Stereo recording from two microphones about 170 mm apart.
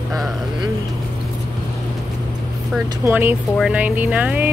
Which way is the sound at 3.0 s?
10° right (ahead or behind).